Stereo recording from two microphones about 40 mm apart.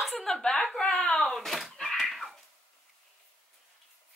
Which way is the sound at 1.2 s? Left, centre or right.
Centre.